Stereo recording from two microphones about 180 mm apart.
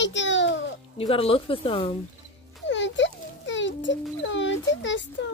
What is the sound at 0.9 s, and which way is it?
Speech, 30° left (ahead or behind).